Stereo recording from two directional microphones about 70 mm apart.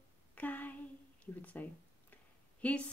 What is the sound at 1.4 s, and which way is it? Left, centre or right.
A woman's voice, left.